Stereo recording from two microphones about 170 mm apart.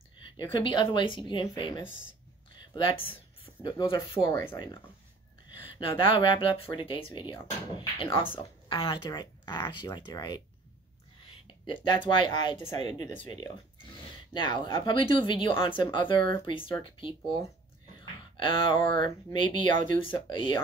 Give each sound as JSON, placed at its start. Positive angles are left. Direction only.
{"t": 0.5, "sound": "speech", "side_deg": 30}
{"t": 5.8, "sound": "speech", "side_deg": 30}
{"t": 14.3, "sound": "speech", "side_deg": 30}
{"t": 18.4, "sound": "speech", "side_deg": 30}
{"t": 19.7, "sound": "speech", "side_deg": -50}
{"t": 20.2, "sound": "speech", "side_deg": 30}